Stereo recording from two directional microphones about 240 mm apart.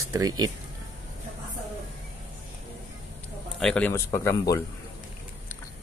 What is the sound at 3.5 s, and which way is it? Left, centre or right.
Speech, centre.